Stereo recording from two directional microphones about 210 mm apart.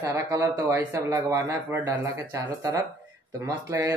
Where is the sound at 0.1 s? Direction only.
15° right (ahead or behind).